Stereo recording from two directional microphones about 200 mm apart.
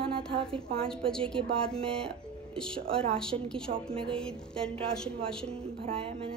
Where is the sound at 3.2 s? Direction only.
5° left (ahead or behind).